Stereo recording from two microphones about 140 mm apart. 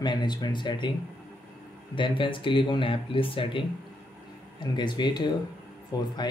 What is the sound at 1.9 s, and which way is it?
Speech, 35° left (ahead or behind).